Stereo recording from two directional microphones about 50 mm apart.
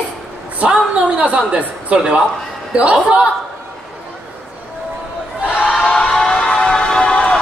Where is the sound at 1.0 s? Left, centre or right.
Right.